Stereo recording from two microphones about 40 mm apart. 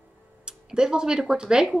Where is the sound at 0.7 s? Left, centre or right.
Centre.